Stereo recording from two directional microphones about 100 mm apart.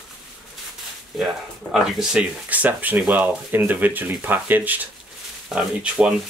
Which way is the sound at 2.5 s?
15° right (ahead or behind).